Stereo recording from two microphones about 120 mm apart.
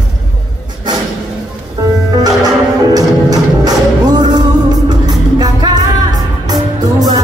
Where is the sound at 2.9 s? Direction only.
30° right (ahead or behind).